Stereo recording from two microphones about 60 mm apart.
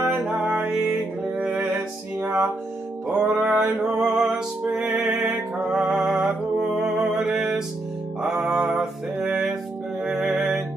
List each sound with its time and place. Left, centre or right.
2.2 s music: right
3.1 s music: centre
3.3 s mantra: centre
4.0 s music: centre
6.8 s mantra: centre
8.5 s mantra: centre
10.0 s music: centre